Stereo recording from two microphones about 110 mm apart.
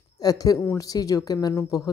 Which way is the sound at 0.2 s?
35° left (ahead or behind).